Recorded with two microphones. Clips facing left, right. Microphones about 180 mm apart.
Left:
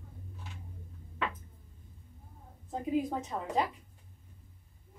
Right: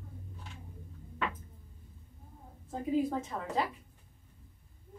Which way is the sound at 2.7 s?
20° left (ahead or behind).